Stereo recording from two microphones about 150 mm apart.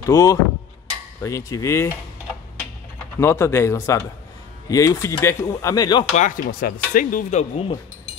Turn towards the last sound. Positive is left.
turn(degrees=45)  # may be behind; listen again after turning